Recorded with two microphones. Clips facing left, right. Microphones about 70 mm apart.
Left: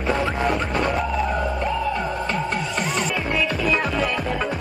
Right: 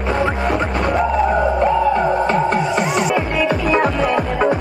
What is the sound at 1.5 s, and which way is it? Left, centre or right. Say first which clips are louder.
Music: right 9 dB; right.